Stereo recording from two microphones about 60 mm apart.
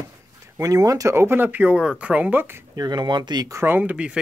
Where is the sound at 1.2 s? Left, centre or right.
Right.